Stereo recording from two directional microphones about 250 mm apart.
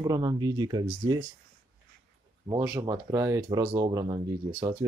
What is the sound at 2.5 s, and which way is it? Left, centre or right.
Speech, centre.